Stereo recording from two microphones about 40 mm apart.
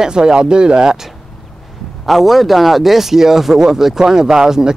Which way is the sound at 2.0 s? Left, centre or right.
Centre.